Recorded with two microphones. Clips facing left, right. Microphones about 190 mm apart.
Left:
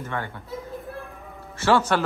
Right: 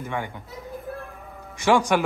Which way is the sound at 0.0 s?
15° right (ahead or behind).